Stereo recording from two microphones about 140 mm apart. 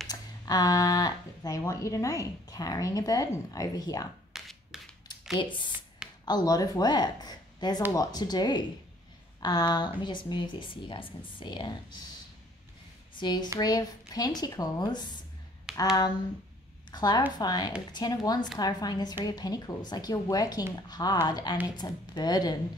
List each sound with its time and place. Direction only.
0.1 s speech: 25° left (ahead or behind)
4.3 s a sound: centre (ahead or behind)
5.4 s speech: 35° left (ahead or behind)
13.2 s speech: 30° left (ahead or behind)
15.7 s a sound: 5° right (ahead or behind)
16.9 s speech: 30° left (ahead or behind)